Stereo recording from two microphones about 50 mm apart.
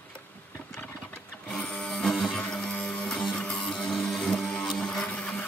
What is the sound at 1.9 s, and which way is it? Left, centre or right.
Music, centre.